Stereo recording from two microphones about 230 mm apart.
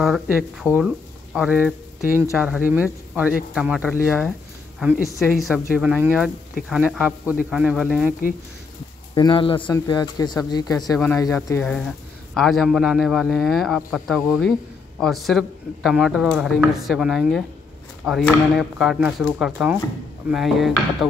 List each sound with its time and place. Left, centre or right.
0.0 s speech: centre
9.1 s speech: left; by 20.7 s centre